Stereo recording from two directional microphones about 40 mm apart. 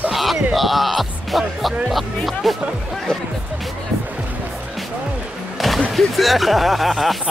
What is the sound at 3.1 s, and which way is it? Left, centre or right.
Music, left.